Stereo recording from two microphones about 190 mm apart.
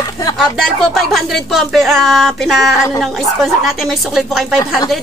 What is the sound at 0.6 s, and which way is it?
Speech, centre (ahead or behind).